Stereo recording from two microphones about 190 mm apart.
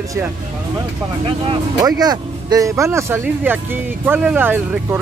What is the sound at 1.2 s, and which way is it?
Speech, 25° right (ahead or behind).